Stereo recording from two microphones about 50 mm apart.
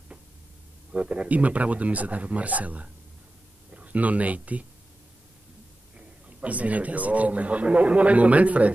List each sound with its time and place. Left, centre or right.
0.9 s speech: right
5.9 s speech: right